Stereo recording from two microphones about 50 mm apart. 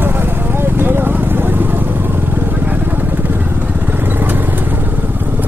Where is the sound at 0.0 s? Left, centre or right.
Right.